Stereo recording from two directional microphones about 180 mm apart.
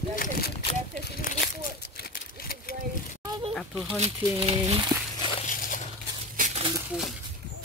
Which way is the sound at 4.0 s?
35° right (ahead or behind).